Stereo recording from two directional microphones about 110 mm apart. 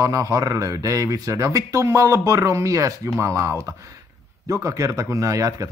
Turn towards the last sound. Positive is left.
turn(degrees=-30)  # may be behind; listen again after turning